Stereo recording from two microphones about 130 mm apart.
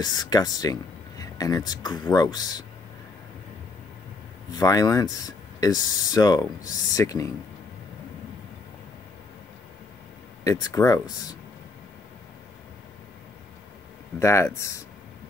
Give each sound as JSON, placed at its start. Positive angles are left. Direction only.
{"t": 0.0, "sound": "speech", "side_deg": 30}
{"t": 4.5, "sound": "speech", "side_deg": 25}
{"t": 10.4, "sound": "speech", "side_deg": 25}
{"t": 14.2, "sound": "speech", "side_deg": 20}